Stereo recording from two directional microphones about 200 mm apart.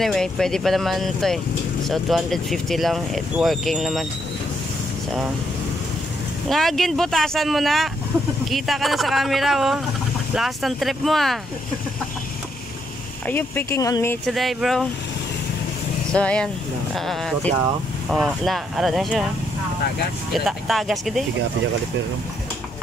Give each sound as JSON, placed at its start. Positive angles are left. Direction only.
{"t": 0.0, "sound": "speech", "side_deg": 0}
{"t": 6.5, "sound": "speech", "side_deg": 0}
{"t": 13.3, "sound": "speech", "side_deg": 10}
{"t": 14.2, "sound": "speech", "side_deg": 0}
{"t": 16.1, "sound": "speech", "side_deg": 5}
{"t": 20.4, "sound": "speech", "side_deg": 0}